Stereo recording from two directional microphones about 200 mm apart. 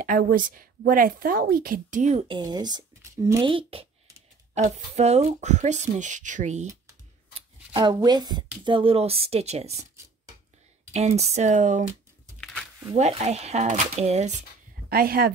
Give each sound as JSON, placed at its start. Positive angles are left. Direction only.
{"t": 0.0, "sound": "speech", "side_deg": -40}
{"t": 7.3, "sound": "speech", "side_deg": -25}
{"t": 10.9, "sound": "speech", "side_deg": -35}
{"t": 12.9, "sound": "speech", "side_deg": -35}
{"t": 14.9, "sound": "speech", "side_deg": -50}